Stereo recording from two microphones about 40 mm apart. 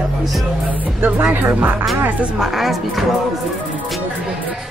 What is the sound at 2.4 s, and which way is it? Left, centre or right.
Speech, centre.